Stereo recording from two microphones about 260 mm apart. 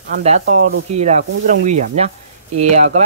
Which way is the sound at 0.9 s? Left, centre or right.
Right.